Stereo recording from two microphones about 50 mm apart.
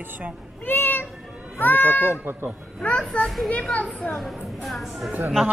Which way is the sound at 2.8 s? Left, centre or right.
Centre.